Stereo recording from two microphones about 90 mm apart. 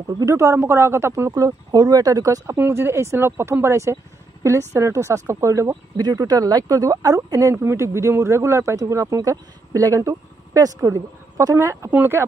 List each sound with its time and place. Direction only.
0.2 s speech: 35° right (ahead or behind)
5.9 s speech: 45° right (ahead or behind); by 12.3 s 25° right (ahead or behind)